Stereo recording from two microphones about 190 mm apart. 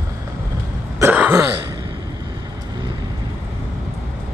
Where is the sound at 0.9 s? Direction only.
10° right (ahead or behind).